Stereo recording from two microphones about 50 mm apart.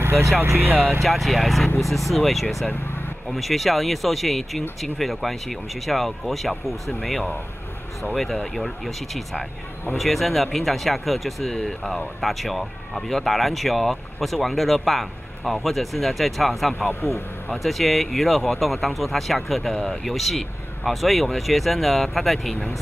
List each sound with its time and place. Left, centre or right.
0.0 s vehicle: right
1.0 s speech: centre
2.7 s vehicle: left
3.3 s speech: centre